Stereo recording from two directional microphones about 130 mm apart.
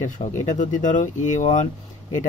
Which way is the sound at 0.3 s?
75° left (ahead or behind).